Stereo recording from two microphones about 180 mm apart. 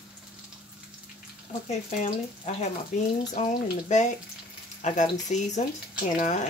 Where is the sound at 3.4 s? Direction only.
40° left (ahead or behind).